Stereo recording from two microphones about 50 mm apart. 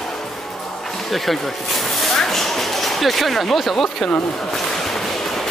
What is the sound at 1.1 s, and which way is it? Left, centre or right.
Speech, centre.